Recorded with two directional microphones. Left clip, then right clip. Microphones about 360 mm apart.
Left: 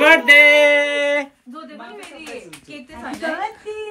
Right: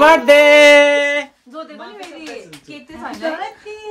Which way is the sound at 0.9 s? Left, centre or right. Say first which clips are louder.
Right 3 dB; centre.